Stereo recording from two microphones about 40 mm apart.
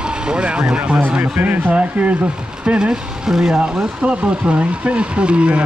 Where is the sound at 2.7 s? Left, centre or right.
Right.